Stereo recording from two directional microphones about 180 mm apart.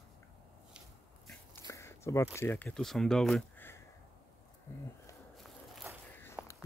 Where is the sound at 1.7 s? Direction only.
15° left (ahead or behind).